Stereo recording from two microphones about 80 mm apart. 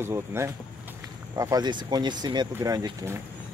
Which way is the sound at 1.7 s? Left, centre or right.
Right.